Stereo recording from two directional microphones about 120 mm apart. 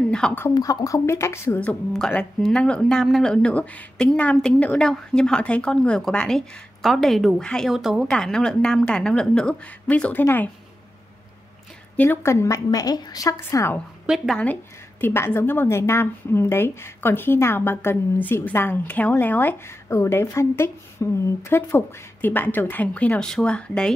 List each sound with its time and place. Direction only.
0.1 s speech: 5° left (ahead or behind)
0.6 s a woman's voice: 30° left (ahead or behind)
12.0 s a woman's voice: 20° left (ahead or behind)
14.0 s speech: centre (ahead or behind)
14.4 s a woman's voice: 15° left (ahead or behind)